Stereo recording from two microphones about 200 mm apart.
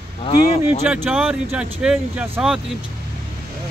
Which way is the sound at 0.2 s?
30° left (ahead or behind).